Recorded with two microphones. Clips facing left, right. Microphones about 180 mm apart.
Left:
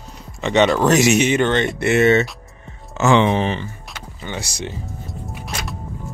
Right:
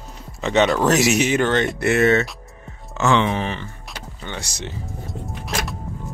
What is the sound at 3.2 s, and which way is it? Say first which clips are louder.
Speech: left 5 dB; 25° left (ahead or behind).